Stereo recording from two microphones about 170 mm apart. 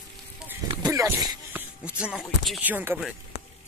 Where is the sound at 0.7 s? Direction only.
20° right (ahead or behind).